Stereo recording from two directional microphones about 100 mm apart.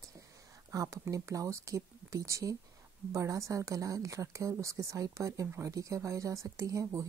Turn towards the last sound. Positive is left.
turn(degrees=-30)  # may be behind; listen again after turning